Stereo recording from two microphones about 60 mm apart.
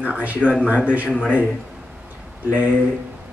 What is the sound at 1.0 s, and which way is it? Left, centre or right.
Speech, left.